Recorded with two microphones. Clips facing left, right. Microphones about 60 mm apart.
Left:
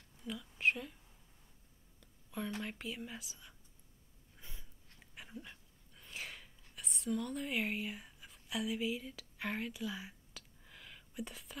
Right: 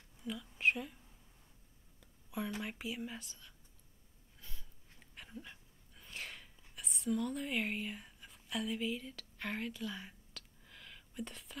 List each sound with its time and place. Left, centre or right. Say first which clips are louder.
0.2 s speech: even; centre
2.0 s speech: right 1 dB; centre
4.4 s snort: left 1 dB; left
5.1 s a sound: even; centre
6.6 s whispering: right 2 dB; centre